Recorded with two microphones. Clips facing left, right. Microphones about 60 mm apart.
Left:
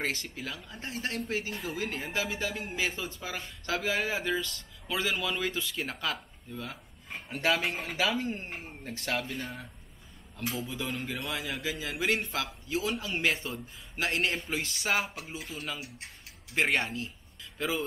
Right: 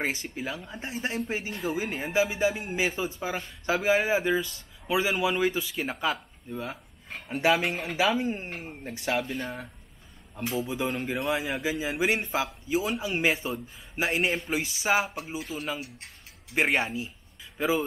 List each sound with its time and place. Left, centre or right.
0.4 s speech: centre
1.5 s speech: centre
1.8 s speech: centre
10.4 s speech: centre